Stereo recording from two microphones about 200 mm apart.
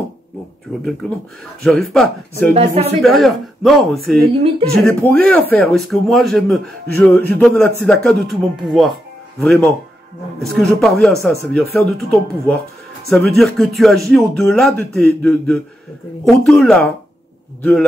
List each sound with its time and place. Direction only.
1.0 s a man's voice: centre (ahead or behind)
2.5 s speech: 30° right (ahead or behind)
3.0 s a man's voice: centre (ahead or behind)